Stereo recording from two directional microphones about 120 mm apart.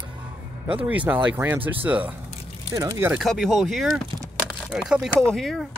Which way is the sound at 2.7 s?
25° right (ahead or behind).